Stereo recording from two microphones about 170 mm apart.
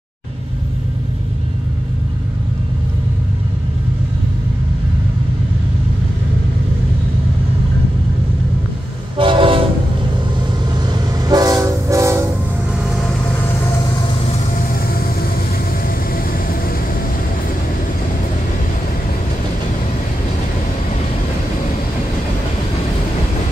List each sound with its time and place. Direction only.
9.1 s train: 30° right (ahead or behind)
10.9 s train: 20° right (ahead or behind)
16.1 s vehicle: 60° left (ahead or behind)